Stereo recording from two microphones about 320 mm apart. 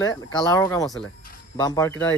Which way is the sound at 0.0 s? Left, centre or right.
Centre.